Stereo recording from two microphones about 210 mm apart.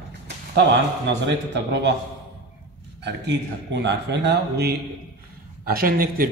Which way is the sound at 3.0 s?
55° right (ahead or behind).